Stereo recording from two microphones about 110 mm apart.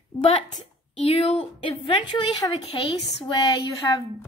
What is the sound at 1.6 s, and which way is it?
Speech, 50° left (ahead or behind).